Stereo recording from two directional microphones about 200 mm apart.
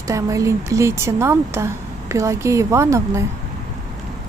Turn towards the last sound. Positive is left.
turn(degrees=-15)  # may be behind; listen again after turning